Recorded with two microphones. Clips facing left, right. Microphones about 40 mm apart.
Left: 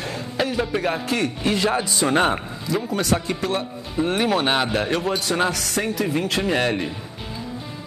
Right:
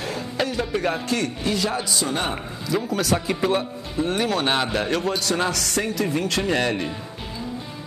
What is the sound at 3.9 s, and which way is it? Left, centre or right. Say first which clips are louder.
A man's voice: left 2 dB; centre.